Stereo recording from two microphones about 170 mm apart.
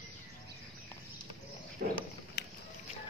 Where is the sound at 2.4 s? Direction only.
80° left.